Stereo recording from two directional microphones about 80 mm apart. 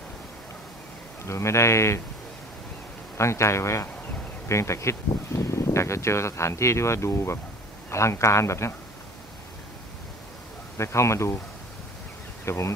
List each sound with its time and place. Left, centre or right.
1.2 s speech: left
3.2 s speech: left
10.8 s speech: left
12.4 s speech: left